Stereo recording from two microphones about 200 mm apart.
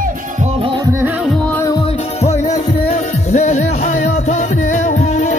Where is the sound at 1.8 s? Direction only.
35° left (ahead or behind).